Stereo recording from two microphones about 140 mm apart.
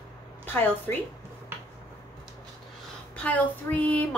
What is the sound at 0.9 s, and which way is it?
Speech, 15° left (ahead or behind).